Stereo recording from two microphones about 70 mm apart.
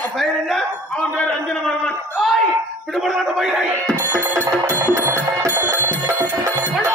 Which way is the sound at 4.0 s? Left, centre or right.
Right.